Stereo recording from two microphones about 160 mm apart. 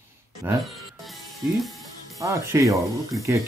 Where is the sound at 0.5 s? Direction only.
15° right (ahead or behind).